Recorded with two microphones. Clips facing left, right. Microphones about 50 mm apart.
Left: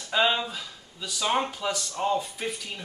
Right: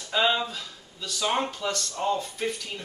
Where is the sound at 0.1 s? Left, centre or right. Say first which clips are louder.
Even; centre.